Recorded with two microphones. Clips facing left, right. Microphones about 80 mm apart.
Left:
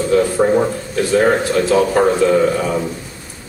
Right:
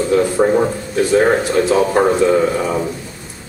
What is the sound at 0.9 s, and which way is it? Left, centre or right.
Speech, centre.